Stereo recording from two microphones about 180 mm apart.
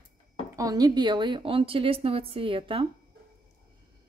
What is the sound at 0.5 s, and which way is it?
A woman's voice, 20° right (ahead or behind).